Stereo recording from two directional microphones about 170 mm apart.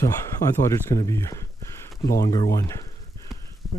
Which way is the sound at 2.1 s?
20° left (ahead or behind).